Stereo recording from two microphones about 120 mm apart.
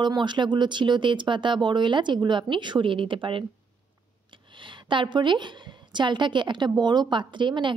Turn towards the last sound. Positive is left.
turn(degrees=-40)  # may be behind; listen again after turning